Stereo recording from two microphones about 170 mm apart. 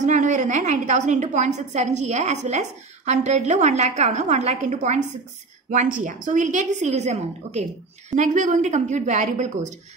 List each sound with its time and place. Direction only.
0.0 s a woman's voice: 45° right (ahead or behind)